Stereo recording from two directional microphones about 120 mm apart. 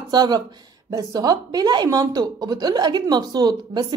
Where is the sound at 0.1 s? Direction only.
35° right (ahead or behind).